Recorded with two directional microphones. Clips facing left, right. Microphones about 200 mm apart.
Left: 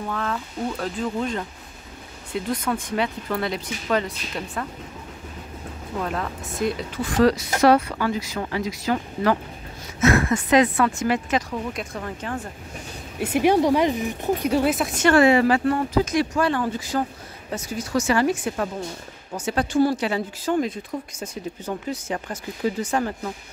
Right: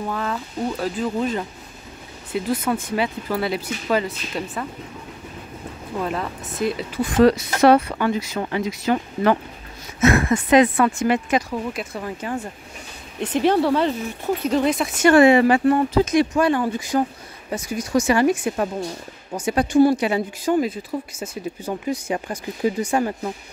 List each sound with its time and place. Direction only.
0.1 s speech: 10° right (ahead or behind)
5.9 s speech: 5° right (ahead or behind)
7.2 s speech: 25° right (ahead or behind)
13.2 s speech: 10° left (ahead or behind)
15.0 s speech: 20° right (ahead or behind)